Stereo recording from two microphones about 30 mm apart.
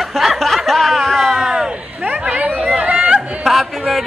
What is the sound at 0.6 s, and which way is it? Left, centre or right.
Music, centre.